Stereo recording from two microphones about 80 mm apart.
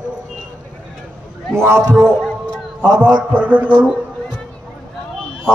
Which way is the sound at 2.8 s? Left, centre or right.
Right.